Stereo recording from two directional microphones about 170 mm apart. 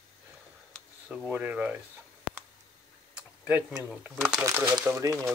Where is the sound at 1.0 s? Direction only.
5° right (ahead or behind).